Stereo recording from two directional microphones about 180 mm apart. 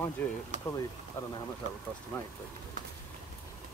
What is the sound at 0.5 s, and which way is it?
Speech, 45° right (ahead or behind).